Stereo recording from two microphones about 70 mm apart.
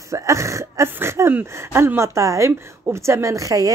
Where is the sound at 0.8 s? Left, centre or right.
Right.